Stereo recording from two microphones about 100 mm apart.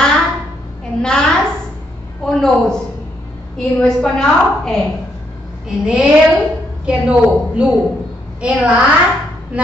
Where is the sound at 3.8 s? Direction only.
5° left (ahead or behind).